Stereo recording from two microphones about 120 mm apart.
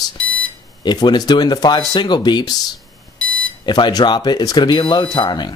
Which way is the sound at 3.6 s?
40° left (ahead or behind).